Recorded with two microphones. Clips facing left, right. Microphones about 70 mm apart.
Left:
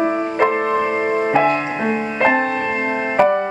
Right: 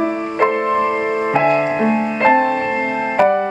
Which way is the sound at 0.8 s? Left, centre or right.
Centre.